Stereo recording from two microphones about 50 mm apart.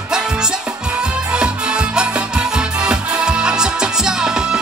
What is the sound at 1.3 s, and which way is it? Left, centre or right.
Music, centre.